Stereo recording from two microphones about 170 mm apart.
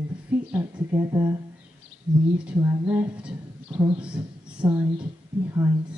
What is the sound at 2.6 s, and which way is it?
A woman's voice, 15° right (ahead or behind).